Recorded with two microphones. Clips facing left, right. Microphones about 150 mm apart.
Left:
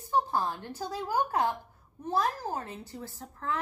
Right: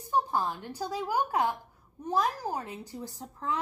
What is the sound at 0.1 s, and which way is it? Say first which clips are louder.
A woman's voice: even; 15° right (ahead or behind).